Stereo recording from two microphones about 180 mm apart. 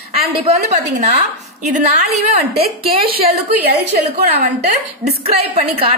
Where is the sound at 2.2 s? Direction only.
35° right (ahead or behind).